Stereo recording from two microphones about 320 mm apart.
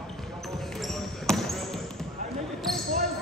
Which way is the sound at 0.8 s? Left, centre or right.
Centre.